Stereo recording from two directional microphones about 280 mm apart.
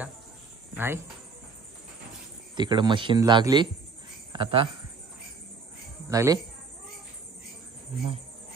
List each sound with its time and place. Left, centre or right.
0.7 s speech: centre
2.5 s speech: centre
6.0 s speech: centre